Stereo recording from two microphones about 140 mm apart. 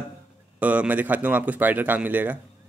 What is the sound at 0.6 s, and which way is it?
Speech, 10° right (ahead or behind).